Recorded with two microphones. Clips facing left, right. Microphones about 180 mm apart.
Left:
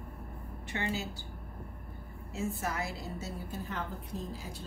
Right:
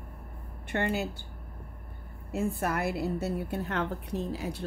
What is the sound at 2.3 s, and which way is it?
A woman's voice, 60° right (ahead or behind).